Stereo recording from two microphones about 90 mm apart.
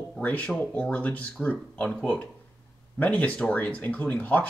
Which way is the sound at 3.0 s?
15° left (ahead or behind).